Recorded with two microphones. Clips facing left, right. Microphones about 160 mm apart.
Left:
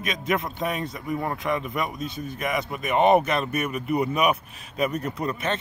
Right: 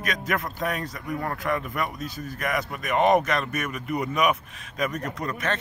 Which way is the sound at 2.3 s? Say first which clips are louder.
Even; centre (ahead or behind).